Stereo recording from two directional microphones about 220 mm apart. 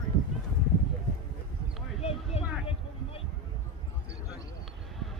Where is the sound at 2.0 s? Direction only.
25° left (ahead or behind).